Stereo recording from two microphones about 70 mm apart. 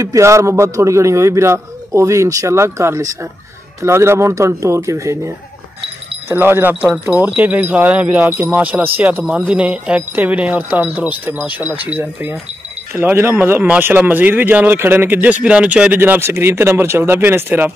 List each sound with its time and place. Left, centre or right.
0.2 s a man's voice: right
6.2 s speech: right
9.5 s speech: centre
16.0 s speech: right